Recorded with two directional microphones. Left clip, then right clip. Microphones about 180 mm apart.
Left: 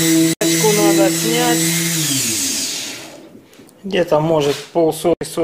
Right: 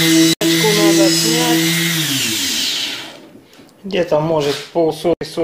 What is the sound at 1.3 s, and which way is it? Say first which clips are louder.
Dental drill: right 1 dB; 10° left (ahead or behind).